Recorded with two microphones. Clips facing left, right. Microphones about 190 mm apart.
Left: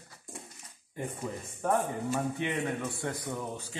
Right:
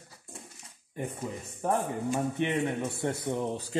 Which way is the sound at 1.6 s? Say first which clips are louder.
Even; 15° right (ahead or behind).